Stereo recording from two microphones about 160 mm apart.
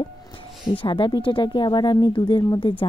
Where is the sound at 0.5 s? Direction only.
Centre (ahead or behind).